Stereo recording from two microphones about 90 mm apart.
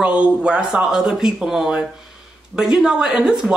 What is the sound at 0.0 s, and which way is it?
Speech, 10° right (ahead or behind).